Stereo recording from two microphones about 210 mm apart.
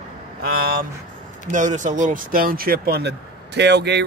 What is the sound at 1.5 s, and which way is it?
Speech, 35° right (ahead or behind).